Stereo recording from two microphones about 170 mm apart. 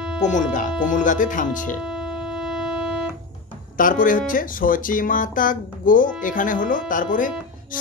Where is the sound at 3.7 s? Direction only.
50° left (ahead or behind).